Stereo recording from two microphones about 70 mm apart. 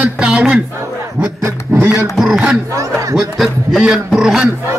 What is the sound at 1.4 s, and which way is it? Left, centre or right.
Speech, right.